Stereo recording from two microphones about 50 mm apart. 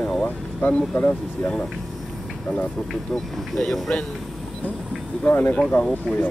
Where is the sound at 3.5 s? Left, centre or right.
Centre.